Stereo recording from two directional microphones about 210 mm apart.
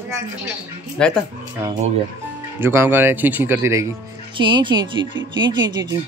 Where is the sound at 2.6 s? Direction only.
10° right (ahead or behind).